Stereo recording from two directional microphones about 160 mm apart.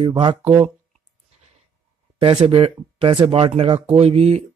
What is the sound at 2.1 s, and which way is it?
Speech, 35° right (ahead or behind).